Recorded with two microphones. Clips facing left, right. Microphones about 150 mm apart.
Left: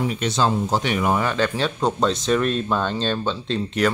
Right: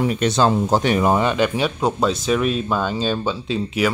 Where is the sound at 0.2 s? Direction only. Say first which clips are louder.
Right 4 dB; 50° right (ahead or behind).